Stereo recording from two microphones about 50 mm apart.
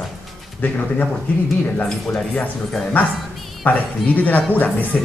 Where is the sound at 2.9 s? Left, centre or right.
Left.